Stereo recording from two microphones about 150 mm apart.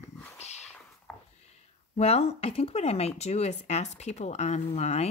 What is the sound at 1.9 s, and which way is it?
Speech, 45° left (ahead or behind).